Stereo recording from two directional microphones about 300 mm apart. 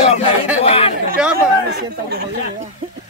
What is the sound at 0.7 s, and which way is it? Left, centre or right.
Chatter, centre.